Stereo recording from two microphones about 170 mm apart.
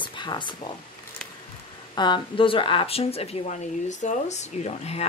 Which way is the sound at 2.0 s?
25° left (ahead or behind).